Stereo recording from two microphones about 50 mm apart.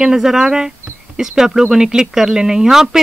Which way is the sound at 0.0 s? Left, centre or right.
Centre.